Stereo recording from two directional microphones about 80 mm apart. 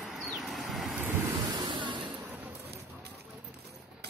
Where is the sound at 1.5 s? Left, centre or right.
Right.